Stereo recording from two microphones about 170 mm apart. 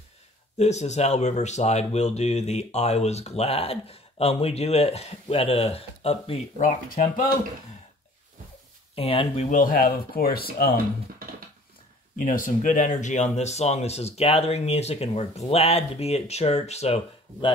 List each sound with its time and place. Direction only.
0.6 s speech: 40° left (ahead or behind)
8.9 s speech: 35° left (ahead or behind); by 10.8 s 65° left (ahead or behind)
12.2 s speech: 55° left (ahead or behind); by 17.5 s 35° left (ahead or behind)